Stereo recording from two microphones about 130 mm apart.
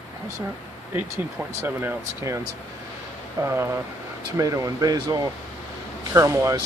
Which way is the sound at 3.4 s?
20° right (ahead or behind).